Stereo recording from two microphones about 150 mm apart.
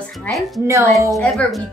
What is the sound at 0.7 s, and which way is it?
Speech, 20° right (ahead or behind).